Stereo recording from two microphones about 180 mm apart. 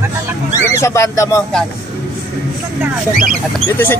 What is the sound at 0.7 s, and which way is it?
Speech, 15° left (ahead or behind).